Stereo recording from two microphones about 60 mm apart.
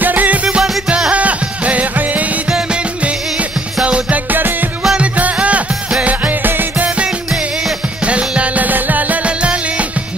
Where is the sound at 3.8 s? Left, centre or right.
Centre.